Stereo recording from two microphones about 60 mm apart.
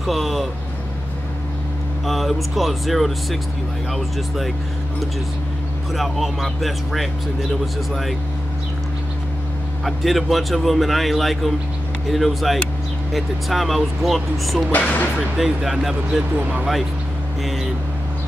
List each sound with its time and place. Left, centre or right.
0.0 s speech: centre
2.0 s speech: centre
5.9 s speech: centre
9.8 s speech: centre
14.7 s speech: left
15.3 s speech: centre
17.4 s speech: centre